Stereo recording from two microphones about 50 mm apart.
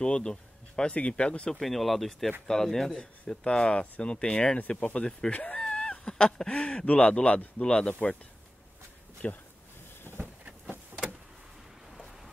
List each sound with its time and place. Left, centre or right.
0.0 s speech: centre
1.5 s speech: centre
3.0 s speech: centre
4.6 s speech: left
4.9 s speech: centre
7.9 s speech: left
9.2 s speech: left
10.1 s a sound: left
11.9 s a sound: centre